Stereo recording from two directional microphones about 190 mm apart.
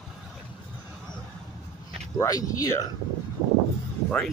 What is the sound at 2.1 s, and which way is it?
Speech, 20° left (ahead or behind).